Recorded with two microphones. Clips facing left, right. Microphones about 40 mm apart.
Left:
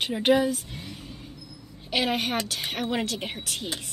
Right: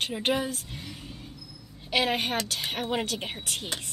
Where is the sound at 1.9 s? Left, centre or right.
Centre.